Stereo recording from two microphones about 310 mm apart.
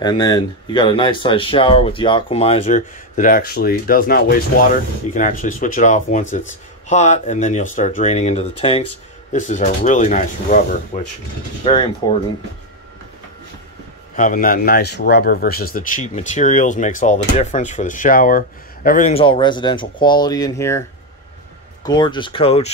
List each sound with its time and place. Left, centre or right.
0.0 s speech: centre
14.1 s speech: left; by 20.8 s centre
21.8 s speech: centre